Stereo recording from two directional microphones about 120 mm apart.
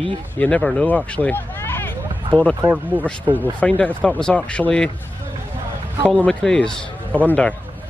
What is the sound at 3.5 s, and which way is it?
Speech, 10° left (ahead or behind).